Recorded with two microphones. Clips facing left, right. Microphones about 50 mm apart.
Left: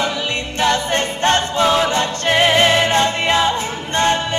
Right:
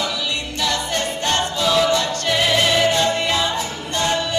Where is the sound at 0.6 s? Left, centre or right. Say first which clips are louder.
Left 5 dB; left.